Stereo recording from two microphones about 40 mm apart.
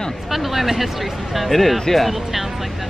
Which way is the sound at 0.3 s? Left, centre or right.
Centre.